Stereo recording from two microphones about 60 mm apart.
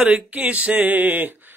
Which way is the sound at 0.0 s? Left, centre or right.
Right.